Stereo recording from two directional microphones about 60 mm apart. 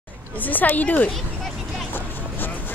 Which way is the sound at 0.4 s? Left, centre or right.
Left.